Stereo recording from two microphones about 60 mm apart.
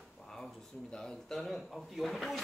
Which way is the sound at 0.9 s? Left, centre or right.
Centre.